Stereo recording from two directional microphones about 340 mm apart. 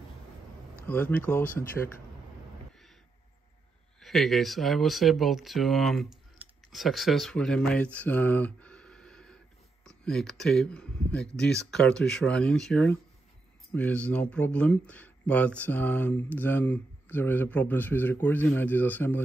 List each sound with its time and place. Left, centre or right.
0.8 s speech: centre
4.0 s speech: centre